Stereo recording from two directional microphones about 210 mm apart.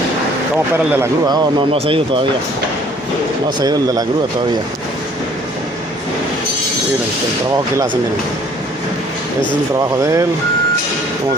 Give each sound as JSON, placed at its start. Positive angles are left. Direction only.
{"t": 0.9, "sound": "speech", "side_deg": -20}
{"t": 3.4, "sound": "speech", "side_deg": -20}
{"t": 7.7, "sound": "speech", "side_deg": -20}
{"t": 9.8, "sound": "speech", "side_deg": -15}